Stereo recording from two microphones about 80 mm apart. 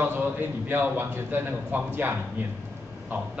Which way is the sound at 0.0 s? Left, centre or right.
Right.